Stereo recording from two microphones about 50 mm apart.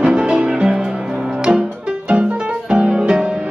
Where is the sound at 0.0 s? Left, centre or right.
Centre.